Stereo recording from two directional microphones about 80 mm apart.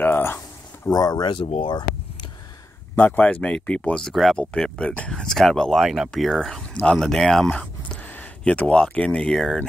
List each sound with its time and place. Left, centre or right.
0.0 s a sound: left
0.8 s speech: left
3.0 s speech: centre
4.1 s speech: centre
6.7 s speech: centre